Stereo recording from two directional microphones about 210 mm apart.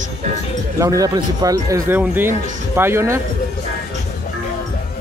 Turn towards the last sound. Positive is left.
turn(degrees=-10)  # may be behind; listen again after turning